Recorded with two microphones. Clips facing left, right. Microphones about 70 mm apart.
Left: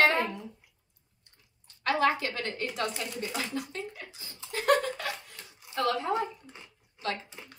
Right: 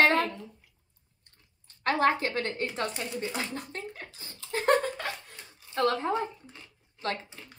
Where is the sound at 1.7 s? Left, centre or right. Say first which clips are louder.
Right 1 dB; right.